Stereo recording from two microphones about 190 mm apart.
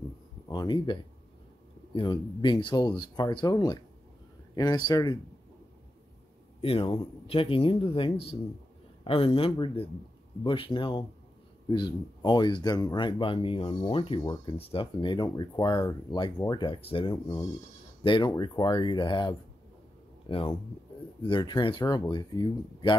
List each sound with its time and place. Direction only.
0.5 s speech: 25° left (ahead or behind)
2.0 s speech: 25° left (ahead or behind)
6.6 s speech: 30° left (ahead or behind)